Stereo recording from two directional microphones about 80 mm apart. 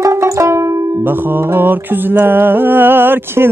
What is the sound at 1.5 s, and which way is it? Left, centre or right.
Music, right.